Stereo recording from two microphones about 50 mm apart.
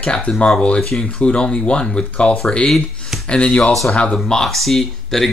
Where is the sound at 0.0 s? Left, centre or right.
Left.